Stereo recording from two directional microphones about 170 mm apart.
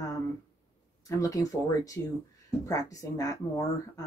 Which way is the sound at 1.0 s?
20° left (ahead or behind).